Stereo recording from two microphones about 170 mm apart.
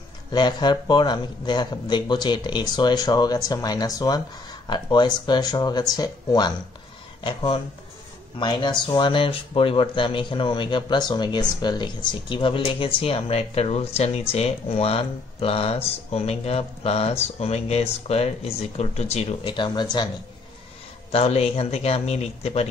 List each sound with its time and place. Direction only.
0.3 s a man's voice: 25° left (ahead or behind)
21.1 s speech: 35° left (ahead or behind)